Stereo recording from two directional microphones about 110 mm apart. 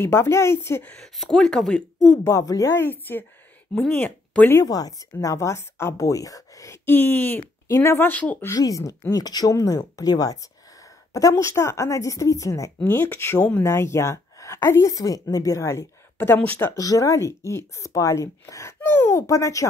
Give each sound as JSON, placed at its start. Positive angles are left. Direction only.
{"t": 0.0, "sound": "speech", "side_deg": 25}
{"t": 0.9, "sound": "speech", "side_deg": 0}
{"t": 2.2, "sound": "speech", "side_deg": 30}
{"t": 4.6, "sound": "speech", "side_deg": 35}
{"t": 8.5, "sound": "speech", "side_deg": 30}
{"t": 16.2, "sound": "speech", "side_deg": 15}
{"t": 16.7, "sound": "speech", "side_deg": 30}